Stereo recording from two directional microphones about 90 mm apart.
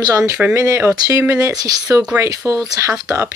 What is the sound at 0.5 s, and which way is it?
Speech, 30° right (ahead or behind).